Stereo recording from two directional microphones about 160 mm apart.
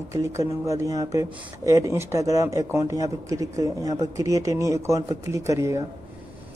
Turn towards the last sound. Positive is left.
turn(degrees=-20)  # may be behind; listen again after turning